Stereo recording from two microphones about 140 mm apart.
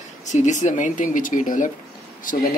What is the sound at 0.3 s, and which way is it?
Speech, 60° left (ahead or behind).